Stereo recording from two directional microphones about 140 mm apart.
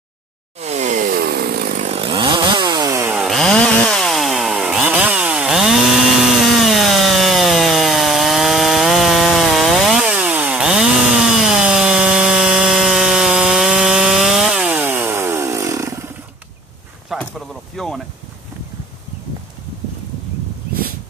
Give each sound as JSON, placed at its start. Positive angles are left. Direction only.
{"t": 0.6, "sound": "chainsaw", "side_deg": -55}
{"t": 1.9, "sound": "chainsaw", "side_deg": -40}
{"t": 3.2, "sound": "chainsaw", "side_deg": 0}
{"t": 6.4, "sound": "wood", "side_deg": 0}
{"t": 17.1, "sound": "a sound", "side_deg": 0}